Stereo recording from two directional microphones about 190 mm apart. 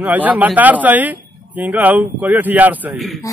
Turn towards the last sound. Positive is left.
turn(degrees=0)  # may be behind; listen again after turning